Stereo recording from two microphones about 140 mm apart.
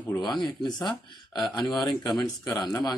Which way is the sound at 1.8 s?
25° left (ahead or behind).